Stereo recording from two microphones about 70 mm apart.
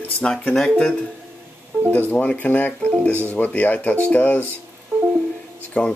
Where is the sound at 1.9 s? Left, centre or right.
Left.